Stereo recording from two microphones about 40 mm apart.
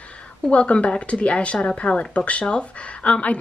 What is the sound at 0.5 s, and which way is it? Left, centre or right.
Speech, left.